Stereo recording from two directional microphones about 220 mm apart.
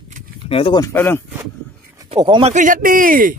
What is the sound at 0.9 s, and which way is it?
Speech, 10° left (ahead or behind).